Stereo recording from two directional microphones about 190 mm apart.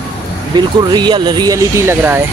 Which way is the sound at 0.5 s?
20° right (ahead or behind).